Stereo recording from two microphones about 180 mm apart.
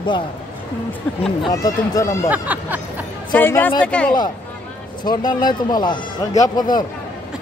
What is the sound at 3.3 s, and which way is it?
Speech, 10° left (ahead or behind).